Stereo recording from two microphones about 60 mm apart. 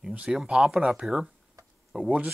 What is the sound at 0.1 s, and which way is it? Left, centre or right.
Speech, right.